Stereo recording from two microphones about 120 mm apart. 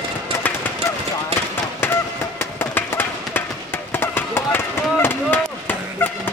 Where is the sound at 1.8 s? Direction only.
20° left (ahead or behind).